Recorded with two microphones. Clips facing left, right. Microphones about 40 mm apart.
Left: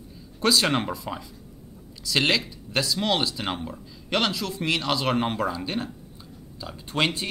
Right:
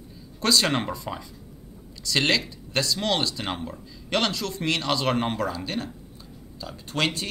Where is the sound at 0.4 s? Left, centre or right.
Centre.